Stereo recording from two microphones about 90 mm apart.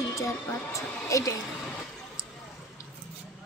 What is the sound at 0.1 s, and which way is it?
Speech, 35° left (ahead or behind).